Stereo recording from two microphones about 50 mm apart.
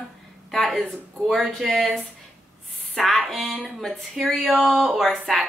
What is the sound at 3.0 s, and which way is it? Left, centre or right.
A woman's voice, centre.